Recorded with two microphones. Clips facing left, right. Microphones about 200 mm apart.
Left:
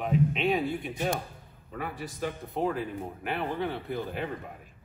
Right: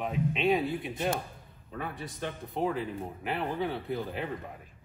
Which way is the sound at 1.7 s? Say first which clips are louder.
Left 2 dB; centre (ahead or behind).